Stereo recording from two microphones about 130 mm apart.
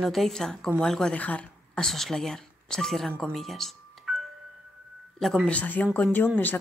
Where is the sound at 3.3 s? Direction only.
Centre (ahead or behind).